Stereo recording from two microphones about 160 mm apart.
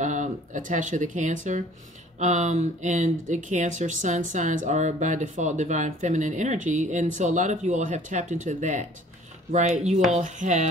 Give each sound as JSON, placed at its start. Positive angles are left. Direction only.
{"t": 0.0, "sound": "speech", "side_deg": -50}